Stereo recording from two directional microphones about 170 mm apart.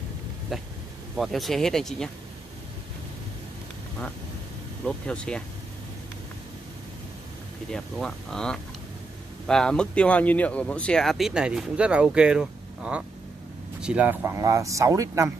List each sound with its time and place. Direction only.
0.5 s speech: centre (ahead or behind)
4.8 s speech: 5° left (ahead or behind)
7.7 s speech: 5° left (ahead or behind); by 15.3 s 20° right (ahead or behind)